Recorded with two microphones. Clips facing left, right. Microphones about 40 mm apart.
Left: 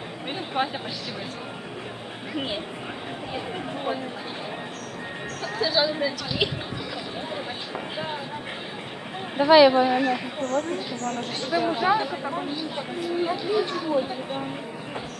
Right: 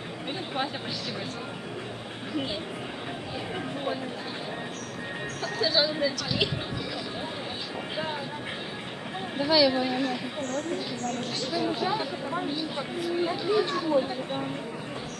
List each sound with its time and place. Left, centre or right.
0.6 s speech: centre
5.4 s speech: centre
9.5 s a woman's voice: left; by 11.2 s centre
11.5 s a woman's voice: left
12.0 s speech: centre